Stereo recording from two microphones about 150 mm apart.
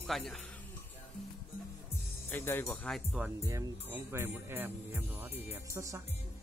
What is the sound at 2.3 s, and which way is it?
Speech, 15° left (ahead or behind).